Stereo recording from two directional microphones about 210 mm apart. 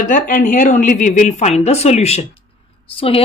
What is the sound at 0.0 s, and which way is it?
Speech, 40° left (ahead or behind).